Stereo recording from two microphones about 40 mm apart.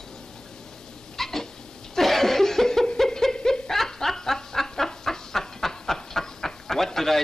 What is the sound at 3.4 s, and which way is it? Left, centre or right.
Snicker, left.